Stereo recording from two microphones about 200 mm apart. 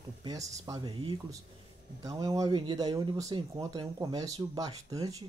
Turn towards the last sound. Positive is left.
turn(degrees=-15)  # may be behind; listen again after turning